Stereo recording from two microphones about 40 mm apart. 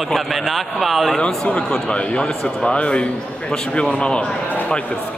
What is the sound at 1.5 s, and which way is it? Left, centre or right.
A man's voice, left.